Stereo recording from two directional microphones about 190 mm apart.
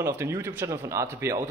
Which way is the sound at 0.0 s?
10° right (ahead or behind).